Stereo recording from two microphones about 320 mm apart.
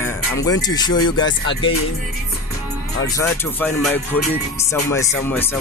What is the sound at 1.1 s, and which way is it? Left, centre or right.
Speech, left.